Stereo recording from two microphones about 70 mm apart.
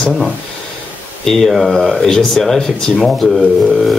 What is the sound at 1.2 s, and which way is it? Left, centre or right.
Speech, centre.